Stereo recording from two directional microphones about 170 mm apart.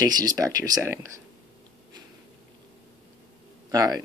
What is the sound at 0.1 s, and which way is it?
Speech, 25° right (ahead or behind).